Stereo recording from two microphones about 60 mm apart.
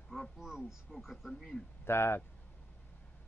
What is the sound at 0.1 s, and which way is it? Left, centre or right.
Speech, centre.